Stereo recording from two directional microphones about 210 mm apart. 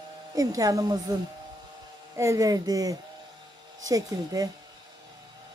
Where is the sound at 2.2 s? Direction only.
15° right (ahead or behind).